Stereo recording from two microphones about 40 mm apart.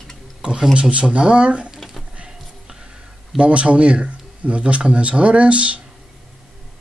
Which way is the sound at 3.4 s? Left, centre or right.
Right.